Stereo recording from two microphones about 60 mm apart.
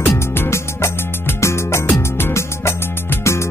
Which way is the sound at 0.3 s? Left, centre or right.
Left.